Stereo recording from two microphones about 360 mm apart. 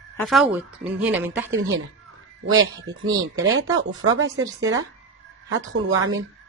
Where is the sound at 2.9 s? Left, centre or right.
Centre.